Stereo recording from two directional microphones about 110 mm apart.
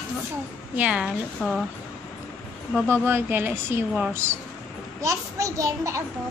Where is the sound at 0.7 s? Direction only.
10° right (ahead or behind).